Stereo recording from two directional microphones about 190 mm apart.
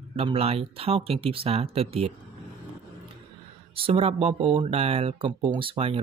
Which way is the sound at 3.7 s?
30° right (ahead or behind).